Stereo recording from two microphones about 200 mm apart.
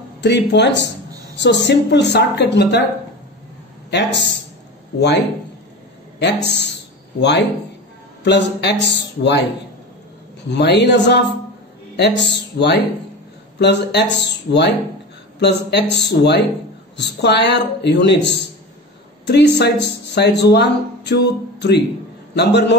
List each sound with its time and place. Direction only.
0.2 s speech: 60° left (ahead or behind)
3.9 s a man's voice: 60° left (ahead or behind)
10.5 s speech: 60° left (ahead or behind)